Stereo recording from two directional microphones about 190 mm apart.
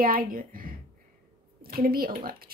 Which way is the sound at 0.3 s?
50° right (ahead or behind).